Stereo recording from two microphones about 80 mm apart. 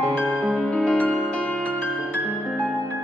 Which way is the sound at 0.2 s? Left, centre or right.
Centre.